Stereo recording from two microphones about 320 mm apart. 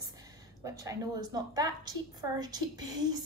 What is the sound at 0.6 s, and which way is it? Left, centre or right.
A woman's voice, centre.